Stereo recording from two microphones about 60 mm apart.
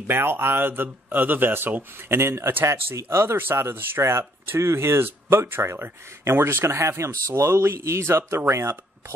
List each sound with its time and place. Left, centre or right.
0.0 s speech: right